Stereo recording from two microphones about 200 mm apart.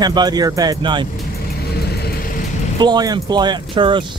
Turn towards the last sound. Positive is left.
turn(degrees=-25)  # may be behind; listen again after turning